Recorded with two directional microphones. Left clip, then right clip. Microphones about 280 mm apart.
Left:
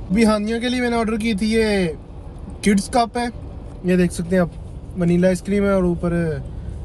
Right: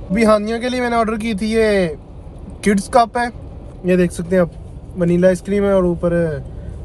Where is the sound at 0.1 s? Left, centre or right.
Right.